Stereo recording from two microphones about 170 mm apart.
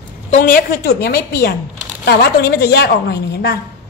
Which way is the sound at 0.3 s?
55° left (ahead or behind).